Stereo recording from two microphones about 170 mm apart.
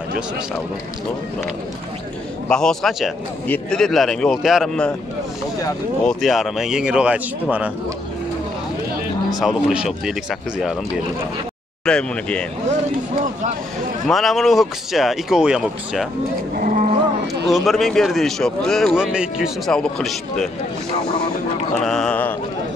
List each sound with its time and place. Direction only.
2.5 s a man's voice: 5° left (ahead or behind)
6.0 s a man's voice: centre (ahead or behind)
9.4 s a man's voice: 5° right (ahead or behind)
11.8 s a man's voice: 5° left (ahead or behind)
14.0 s a man's voice: centre (ahead or behind)
16.5 s a sound: 55° right (ahead or behind)
17.6 s a man's voice: centre (ahead or behind)
21.7 s a sound: 5° left (ahead or behind)